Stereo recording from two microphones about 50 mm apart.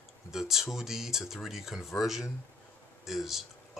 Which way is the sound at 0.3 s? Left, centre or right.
Centre.